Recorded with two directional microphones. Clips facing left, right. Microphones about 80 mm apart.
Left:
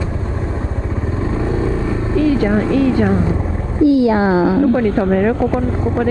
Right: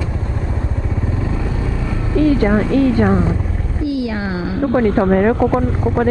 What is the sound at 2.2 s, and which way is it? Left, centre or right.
Speech, right.